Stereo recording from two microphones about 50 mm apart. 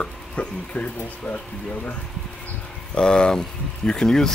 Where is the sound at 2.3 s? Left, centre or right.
Left.